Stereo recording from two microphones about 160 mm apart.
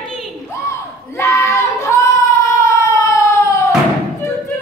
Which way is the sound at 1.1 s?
20° left (ahead or behind).